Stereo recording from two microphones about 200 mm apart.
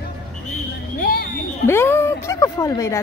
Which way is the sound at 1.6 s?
10° left (ahead or behind).